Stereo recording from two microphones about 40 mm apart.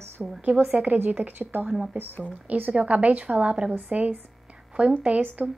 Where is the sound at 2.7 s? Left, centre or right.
Right.